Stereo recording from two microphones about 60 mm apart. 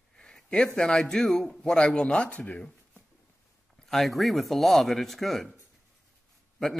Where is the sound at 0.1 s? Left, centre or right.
Centre.